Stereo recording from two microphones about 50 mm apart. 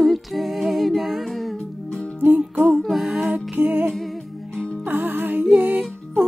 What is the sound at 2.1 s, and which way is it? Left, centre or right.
Music, right.